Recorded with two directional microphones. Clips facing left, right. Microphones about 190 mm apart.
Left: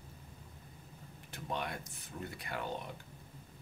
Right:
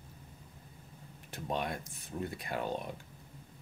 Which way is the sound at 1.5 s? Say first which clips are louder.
Right 4 dB; 20° right (ahead or behind).